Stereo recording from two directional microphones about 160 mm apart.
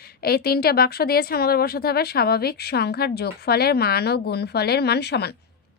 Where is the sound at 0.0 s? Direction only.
75° left (ahead or behind); by 5.4 s 90° left.